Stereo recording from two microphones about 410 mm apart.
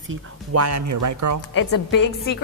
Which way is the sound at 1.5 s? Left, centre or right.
Left.